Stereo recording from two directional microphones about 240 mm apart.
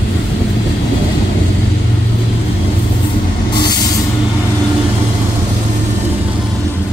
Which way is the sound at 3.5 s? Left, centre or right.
Centre.